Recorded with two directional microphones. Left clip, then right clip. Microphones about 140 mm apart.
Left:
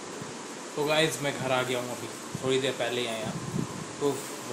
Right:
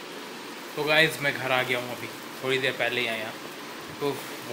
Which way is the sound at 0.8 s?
10° left (ahead or behind).